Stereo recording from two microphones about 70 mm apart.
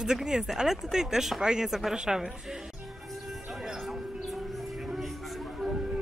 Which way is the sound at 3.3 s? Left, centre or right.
Centre.